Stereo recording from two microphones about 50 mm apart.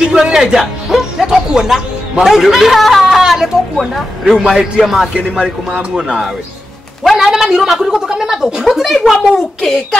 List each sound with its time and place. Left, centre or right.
0.0 s speech: centre
7.2 s speech: centre